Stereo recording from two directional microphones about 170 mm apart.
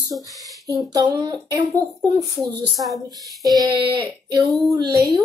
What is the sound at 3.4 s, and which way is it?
Speech, 20° right (ahead or behind).